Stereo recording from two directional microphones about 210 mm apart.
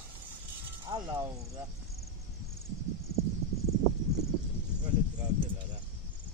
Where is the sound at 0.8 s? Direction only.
20° right (ahead or behind).